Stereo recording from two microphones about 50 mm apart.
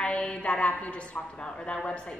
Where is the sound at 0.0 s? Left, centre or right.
Centre.